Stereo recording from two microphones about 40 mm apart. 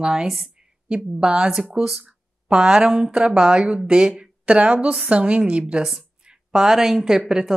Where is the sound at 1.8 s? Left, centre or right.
Centre.